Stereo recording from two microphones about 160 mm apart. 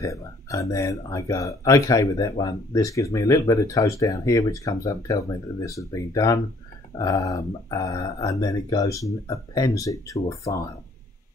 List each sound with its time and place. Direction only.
0.0 s speech: 20° left (ahead or behind)